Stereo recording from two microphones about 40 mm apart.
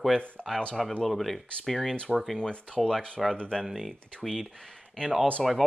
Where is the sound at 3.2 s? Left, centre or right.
Centre.